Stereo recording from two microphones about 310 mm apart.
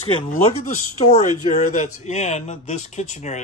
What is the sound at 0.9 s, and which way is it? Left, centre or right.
Speech, left.